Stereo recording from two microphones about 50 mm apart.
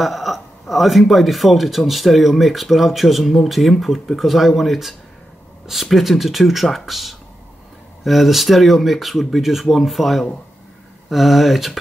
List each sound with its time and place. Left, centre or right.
0.0 s speech: centre